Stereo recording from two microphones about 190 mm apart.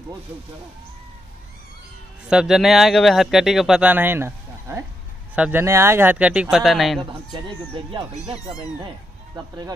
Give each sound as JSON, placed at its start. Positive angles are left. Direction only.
{"t": 2.2, "sound": "speech", "side_deg": -5}
{"t": 7.3, "sound": "speech", "side_deg": -25}